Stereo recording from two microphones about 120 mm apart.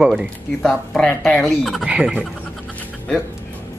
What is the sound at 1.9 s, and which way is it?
Speech, 10° right (ahead or behind).